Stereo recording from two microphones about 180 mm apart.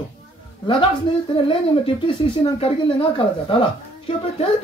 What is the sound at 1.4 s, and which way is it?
Speech, 30° left (ahead or behind).